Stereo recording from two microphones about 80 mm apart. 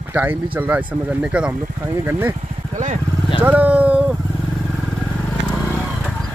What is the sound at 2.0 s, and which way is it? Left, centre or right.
Speech, right.